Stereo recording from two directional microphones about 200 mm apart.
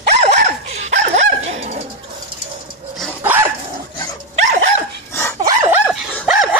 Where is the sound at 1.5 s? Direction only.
35° right (ahead or behind).